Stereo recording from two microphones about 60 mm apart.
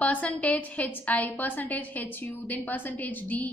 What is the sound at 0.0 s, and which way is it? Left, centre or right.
A woman's voice, left.